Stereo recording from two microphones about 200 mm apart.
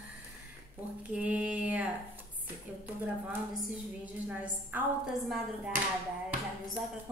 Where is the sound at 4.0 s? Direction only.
10° right (ahead or behind).